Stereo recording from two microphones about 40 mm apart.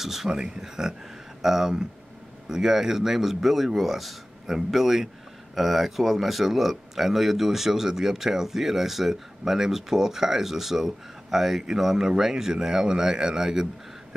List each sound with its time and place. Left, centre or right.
0.0 s speech: centre